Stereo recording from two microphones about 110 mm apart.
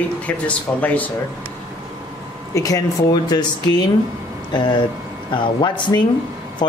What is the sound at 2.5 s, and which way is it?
Speech, 30° left (ahead or behind).